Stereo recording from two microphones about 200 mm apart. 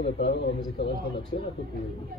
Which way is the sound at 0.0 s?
60° left (ahead or behind).